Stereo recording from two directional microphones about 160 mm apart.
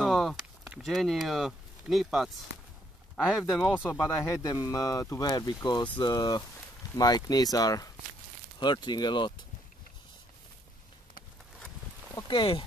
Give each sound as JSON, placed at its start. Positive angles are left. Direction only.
{"t": 0.0, "sound": "a sound", "side_deg": 0}
{"t": 3.2, "sound": "speech", "side_deg": 0}
{"t": 4.4, "sound": "speech", "side_deg": 20}
{"t": 12.3, "sound": "speech", "side_deg": 30}